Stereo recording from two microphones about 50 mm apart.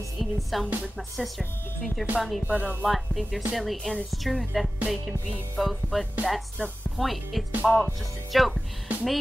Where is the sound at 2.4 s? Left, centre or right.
Right.